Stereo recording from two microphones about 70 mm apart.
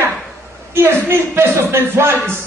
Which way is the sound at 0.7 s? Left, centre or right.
Right.